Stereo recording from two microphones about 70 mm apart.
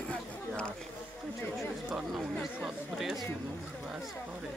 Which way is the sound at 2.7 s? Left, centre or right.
Centre.